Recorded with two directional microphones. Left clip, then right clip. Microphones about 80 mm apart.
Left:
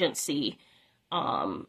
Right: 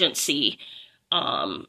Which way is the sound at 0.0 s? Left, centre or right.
Left.